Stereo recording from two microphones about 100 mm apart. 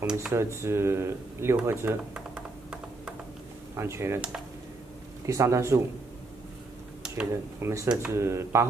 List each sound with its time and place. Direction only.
0.0 s speech: 10° right (ahead or behind)
0.3 s speech: 25° right (ahead or behind)
2.1 s a sound: 10° right (ahead or behind)
3.7 s speech: 25° right (ahead or behind)
5.2 s speech: 30° right (ahead or behind)
7.6 s speech: 30° right (ahead or behind)